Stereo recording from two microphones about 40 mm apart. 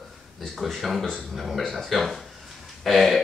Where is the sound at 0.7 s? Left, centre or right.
Centre.